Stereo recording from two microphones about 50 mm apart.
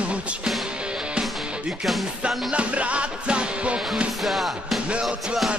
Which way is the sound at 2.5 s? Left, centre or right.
Right.